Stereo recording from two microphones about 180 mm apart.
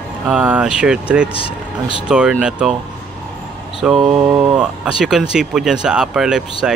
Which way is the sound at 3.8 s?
5° right (ahead or behind).